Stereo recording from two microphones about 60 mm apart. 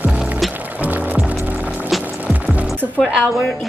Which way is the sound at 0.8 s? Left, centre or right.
Right.